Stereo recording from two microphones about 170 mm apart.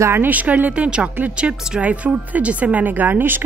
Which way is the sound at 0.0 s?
15° right (ahead or behind).